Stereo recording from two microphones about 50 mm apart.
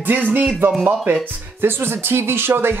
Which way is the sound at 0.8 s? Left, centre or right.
Right.